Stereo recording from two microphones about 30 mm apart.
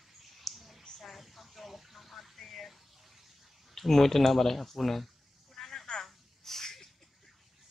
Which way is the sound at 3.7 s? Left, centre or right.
Centre.